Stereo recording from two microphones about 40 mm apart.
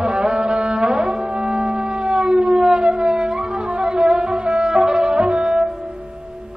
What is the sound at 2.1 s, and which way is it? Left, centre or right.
Siren, centre.